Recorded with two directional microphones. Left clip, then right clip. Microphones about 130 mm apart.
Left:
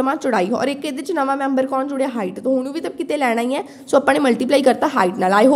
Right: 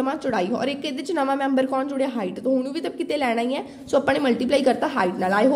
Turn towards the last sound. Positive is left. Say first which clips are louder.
# left 6 dB
turn(degrees=40)  # may be behind; listen again after turning